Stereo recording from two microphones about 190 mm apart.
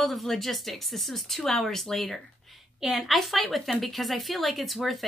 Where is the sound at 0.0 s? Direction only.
Centre (ahead or behind).